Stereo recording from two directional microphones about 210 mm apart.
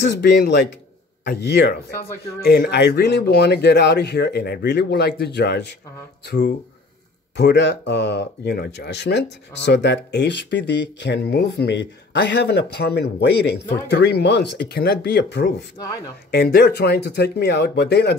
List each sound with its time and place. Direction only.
0.2 s speech: 50° left (ahead or behind)